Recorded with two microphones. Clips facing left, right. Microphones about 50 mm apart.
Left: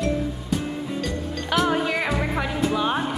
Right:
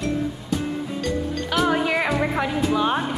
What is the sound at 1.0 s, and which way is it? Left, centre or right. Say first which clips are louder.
Music: right 3 dB; centre.